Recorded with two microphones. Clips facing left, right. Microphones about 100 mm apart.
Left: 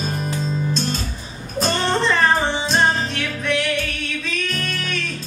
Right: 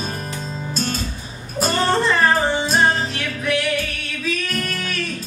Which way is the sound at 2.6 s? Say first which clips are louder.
Right 1 dB; 5° right (ahead or behind).